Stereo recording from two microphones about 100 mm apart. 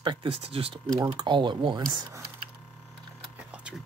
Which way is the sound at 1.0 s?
50° right (ahead or behind).